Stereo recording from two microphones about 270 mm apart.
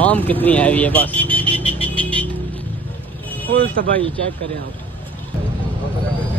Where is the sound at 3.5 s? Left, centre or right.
Right.